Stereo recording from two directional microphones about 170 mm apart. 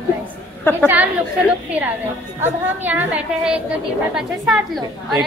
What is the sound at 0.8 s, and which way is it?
Speech, 10° right (ahead or behind).